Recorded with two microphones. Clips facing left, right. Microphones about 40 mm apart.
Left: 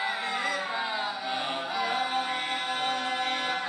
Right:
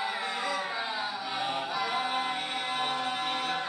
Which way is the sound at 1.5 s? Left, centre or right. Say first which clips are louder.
Left 1 dB; left.